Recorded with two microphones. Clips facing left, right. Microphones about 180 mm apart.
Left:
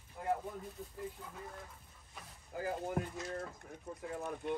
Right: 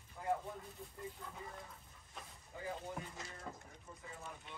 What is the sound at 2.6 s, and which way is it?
Speech, 70° left (ahead or behind).